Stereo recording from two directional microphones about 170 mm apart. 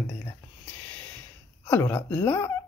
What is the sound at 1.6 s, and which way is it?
Speech, 15° left (ahead or behind).